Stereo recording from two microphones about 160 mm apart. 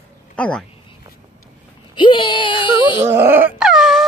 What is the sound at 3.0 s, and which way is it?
Wail, 15° right (ahead or behind).